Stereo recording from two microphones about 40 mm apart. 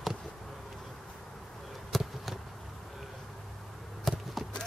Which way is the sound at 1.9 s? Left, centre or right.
Centre.